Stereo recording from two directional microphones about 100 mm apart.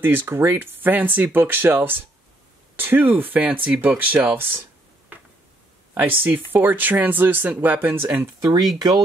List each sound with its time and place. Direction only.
0.0 s speech: 20° right (ahead or behind)
5.9 s speech: 20° right (ahead or behind)
8.7 s speech: 45° right (ahead or behind)